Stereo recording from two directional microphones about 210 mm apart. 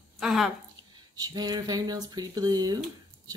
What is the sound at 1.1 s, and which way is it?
Speech, 20° right (ahead or behind).